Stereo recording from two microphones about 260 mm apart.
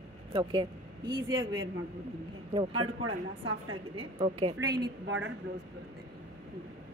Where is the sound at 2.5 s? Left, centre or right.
Right.